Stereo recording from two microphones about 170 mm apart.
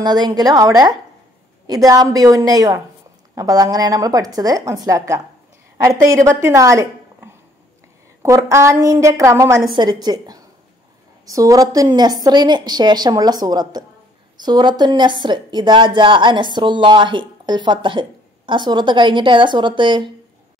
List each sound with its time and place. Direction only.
0.0 s a woman's voice: 25° right (ahead or behind)
8.5 s a woman's voice: 15° right (ahead or behind)